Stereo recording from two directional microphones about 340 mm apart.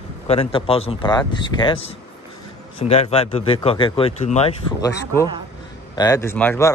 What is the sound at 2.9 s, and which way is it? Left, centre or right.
Speech, centre.